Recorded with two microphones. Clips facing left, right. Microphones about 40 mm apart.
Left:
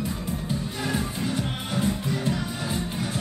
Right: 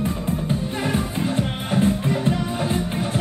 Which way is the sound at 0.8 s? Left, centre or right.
Right.